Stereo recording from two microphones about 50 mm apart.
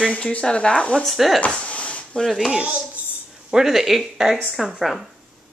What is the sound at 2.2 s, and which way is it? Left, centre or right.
Speech, centre.